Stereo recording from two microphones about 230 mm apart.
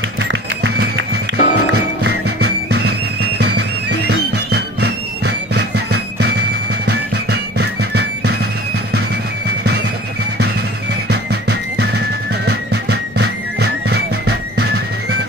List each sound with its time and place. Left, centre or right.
0.6 s music: right
1.4 s music: left
2.4 s music: right
6.9 s music: right
11.1 s music: right